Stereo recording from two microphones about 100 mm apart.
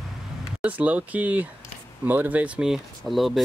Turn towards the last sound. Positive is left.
turn(degrees=0)  # may be behind; listen again after turning